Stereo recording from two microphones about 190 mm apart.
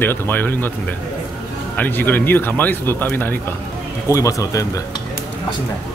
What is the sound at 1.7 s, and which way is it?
A man's voice, 10° left (ahead or behind).